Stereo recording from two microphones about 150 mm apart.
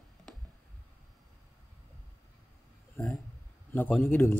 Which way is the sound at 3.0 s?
15° left (ahead or behind).